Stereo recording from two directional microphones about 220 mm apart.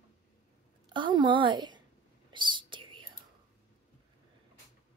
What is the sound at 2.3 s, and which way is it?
Whispering, 20° right (ahead or behind).